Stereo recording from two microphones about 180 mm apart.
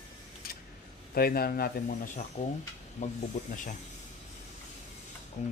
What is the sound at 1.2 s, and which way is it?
Speech, 55° left (ahead or behind).